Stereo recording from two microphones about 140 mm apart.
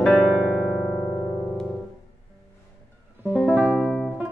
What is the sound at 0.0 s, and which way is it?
Electric piano, 5° right (ahead or behind).